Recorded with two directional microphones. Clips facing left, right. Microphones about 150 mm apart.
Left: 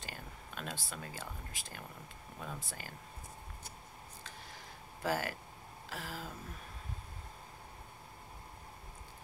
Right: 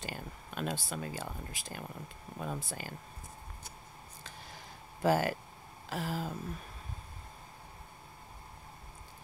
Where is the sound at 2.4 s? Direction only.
30° right (ahead or behind).